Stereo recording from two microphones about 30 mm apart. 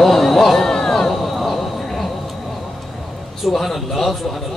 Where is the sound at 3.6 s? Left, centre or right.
Centre.